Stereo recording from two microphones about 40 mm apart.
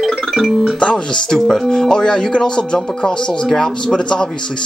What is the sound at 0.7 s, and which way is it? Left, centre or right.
Speech, left.